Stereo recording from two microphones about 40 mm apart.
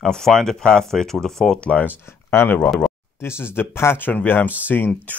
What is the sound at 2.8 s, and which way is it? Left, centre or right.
Speech, left.